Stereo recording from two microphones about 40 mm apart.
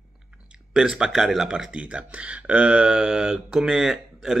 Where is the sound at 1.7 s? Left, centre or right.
Right; by 4.3 s centre.